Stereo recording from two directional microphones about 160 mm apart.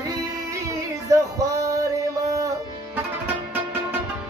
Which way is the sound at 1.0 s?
20° right (ahead or behind).